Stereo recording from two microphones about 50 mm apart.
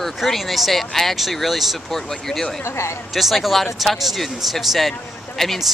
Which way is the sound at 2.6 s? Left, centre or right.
Left.